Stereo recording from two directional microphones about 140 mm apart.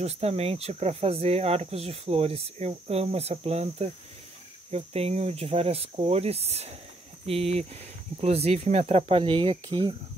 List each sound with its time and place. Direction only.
0.0 s speech: 50° right (ahead or behind)